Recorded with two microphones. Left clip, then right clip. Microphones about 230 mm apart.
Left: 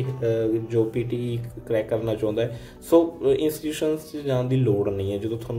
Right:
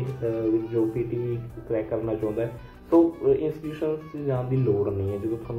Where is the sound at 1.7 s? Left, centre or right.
Left.